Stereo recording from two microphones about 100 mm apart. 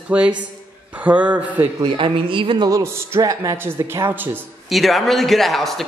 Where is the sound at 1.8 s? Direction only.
60° right (ahead or behind).